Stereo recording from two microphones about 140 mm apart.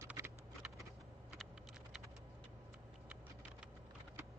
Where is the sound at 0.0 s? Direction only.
15° right (ahead or behind).